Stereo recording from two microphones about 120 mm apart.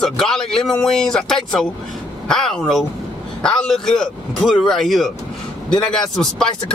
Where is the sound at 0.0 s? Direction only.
5° left (ahead or behind).